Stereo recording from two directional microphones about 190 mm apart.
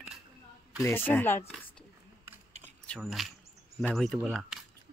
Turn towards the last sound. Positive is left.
turn(degrees=-5)  # may be behind; listen again after turning